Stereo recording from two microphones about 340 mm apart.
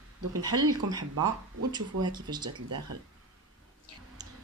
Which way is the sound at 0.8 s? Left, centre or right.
Right.